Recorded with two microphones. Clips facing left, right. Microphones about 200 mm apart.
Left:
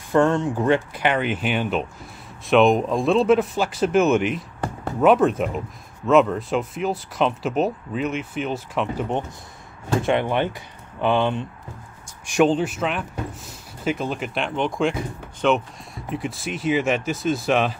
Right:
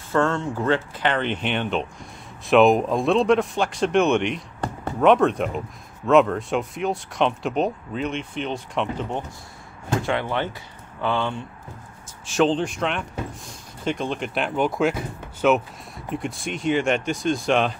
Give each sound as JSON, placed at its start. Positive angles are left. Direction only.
{"t": 0.1, "sound": "speech", "side_deg": 15}
{"t": 10.0, "sound": "speech", "side_deg": 20}